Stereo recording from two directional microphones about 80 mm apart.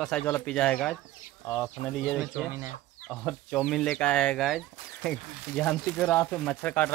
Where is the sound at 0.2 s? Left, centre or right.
Centre.